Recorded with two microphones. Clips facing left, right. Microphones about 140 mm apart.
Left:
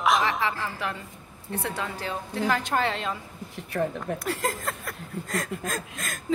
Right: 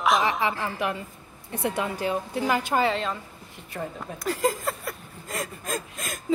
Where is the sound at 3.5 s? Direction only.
65° left (ahead or behind).